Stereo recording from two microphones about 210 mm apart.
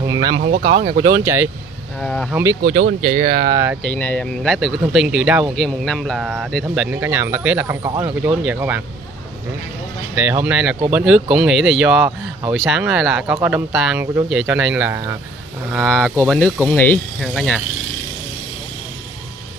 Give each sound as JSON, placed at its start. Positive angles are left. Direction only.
{"t": 0.0, "sound": "a sound", "side_deg": -20}
{"t": 0.5, "sound": "speech", "side_deg": -55}
{"t": 0.8, "sound": "speech", "side_deg": -40}
{"t": 1.1, "sound": "speech", "side_deg": -10}
{"t": 2.0, "sound": "speech", "side_deg": 5}
{"t": 3.0, "sound": "speech", "side_deg": -30}
{"t": 3.8, "sound": "speech", "side_deg": 10}
{"t": 10.1, "sound": "speech", "side_deg": -10}